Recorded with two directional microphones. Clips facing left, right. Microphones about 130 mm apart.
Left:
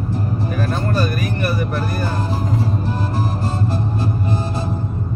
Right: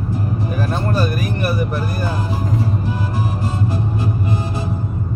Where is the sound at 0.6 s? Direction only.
10° right (ahead or behind).